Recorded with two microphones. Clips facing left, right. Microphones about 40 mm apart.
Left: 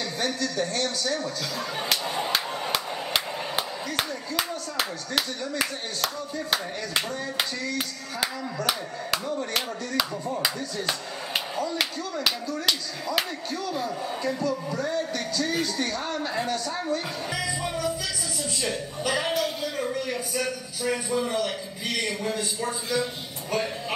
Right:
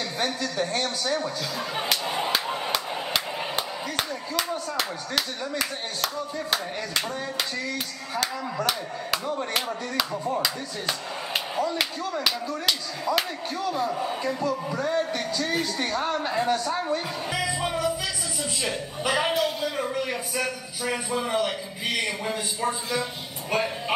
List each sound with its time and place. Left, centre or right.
0.2 s a man's voice: centre
2.7 s chop: centre
10.1 s a man's voice: centre
10.4 s speech: centre
11.5 s a sound: centre
12.6 s a man's voice: centre
19.9 s a man's voice: centre